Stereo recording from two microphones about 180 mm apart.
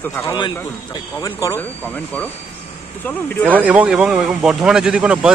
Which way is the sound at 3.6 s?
5° right (ahead or behind).